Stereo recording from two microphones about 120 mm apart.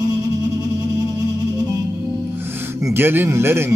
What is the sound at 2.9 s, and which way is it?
Speech, 20° right (ahead or behind).